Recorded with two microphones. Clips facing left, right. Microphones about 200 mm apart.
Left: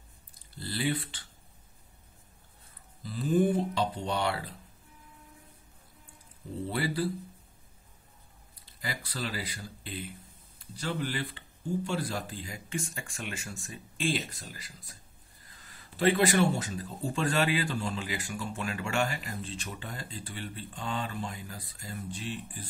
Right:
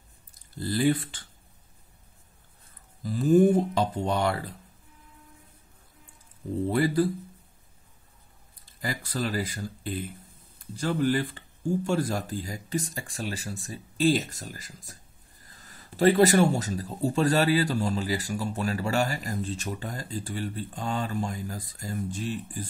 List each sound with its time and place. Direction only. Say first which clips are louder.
0.3 s a sound: right 8 dB; 45° right (ahead or behind)
3.0 s music: right 7 dB; 45° right (ahead or behind)
6.7 s speech: right 7 dB; 45° right (ahead or behind)
8.8 s speech: right 6 dB; 45° right (ahead or behind)